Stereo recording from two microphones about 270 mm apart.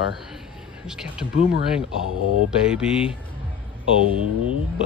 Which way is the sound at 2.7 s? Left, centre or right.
Centre.